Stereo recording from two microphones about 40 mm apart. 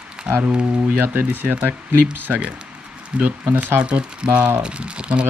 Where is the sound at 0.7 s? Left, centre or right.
Right.